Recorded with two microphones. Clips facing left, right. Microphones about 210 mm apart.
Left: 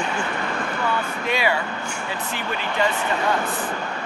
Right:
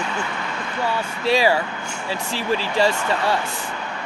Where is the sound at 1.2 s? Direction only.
35° right (ahead or behind).